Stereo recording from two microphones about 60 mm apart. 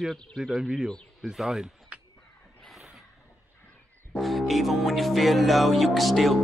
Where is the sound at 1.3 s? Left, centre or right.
Centre.